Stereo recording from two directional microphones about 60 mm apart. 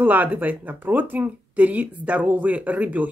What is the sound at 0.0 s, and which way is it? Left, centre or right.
Speech, right.